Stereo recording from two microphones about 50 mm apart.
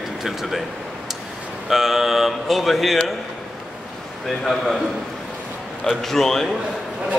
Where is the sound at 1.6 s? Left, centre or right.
Centre.